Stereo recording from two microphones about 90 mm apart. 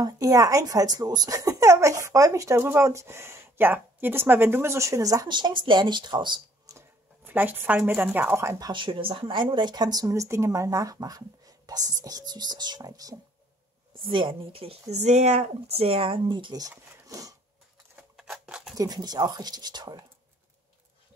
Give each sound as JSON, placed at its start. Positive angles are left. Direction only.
{"t": 0.0, "sound": "speech", "side_deg": -40}
{"t": 5.3, "sound": "a woman's voice", "side_deg": -60}
{"t": 7.2, "sound": "speech", "side_deg": -20}
{"t": 8.7, "sound": "speech", "side_deg": -65}
{"t": 13.9, "sound": "speech", "side_deg": -70}
{"t": 15.8, "sound": "speech", "side_deg": -90}
{"t": 17.1, "sound": "a sound", "side_deg": -40}
{"t": 18.1, "sound": "scissors", "side_deg": -5}
{"t": 18.8, "sound": "speech", "side_deg": -45}